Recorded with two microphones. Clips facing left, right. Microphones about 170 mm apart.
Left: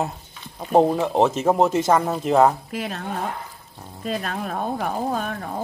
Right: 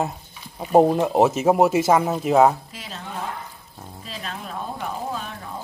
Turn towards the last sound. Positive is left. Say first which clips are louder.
# left 6 dB
turn(degrees=55)  # may be behind; listen again after turning